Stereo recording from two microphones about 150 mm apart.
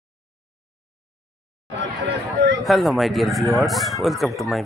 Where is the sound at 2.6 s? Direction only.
Centre (ahead or behind).